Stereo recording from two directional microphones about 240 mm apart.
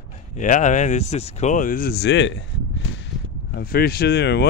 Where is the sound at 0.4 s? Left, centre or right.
Left.